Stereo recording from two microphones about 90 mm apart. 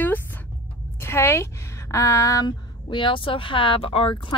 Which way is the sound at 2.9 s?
70° left (ahead or behind).